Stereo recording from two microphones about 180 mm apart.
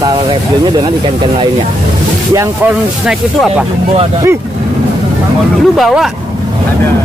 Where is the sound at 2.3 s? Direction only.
20° right (ahead or behind).